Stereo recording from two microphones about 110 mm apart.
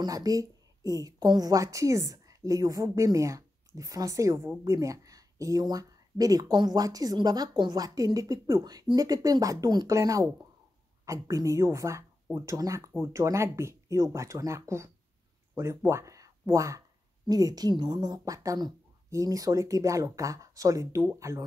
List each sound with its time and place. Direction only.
0.0 s a woman's voice: 35° right (ahead or behind)